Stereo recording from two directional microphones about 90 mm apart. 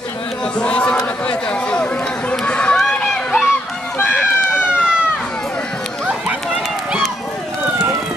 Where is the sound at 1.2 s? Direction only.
10° left (ahead or behind).